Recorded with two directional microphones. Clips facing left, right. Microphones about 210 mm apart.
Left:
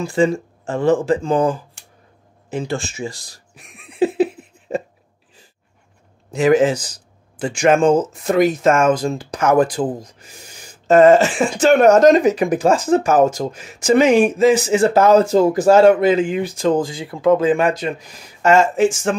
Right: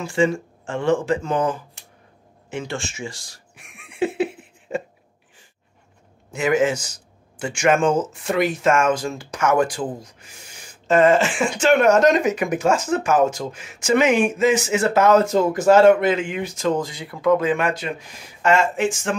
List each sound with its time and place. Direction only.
0.0 s speech: 35° left (ahead or behind)
2.5 s a sound: 35° left (ahead or behind)
6.3 s speech: 35° left (ahead or behind)